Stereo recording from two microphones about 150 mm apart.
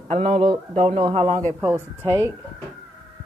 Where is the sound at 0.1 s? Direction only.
45° right (ahead or behind).